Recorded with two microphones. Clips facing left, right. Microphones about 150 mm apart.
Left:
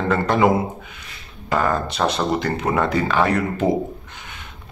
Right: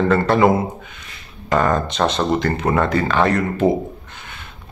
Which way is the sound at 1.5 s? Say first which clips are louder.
Right 3 dB; 10° left (ahead or behind).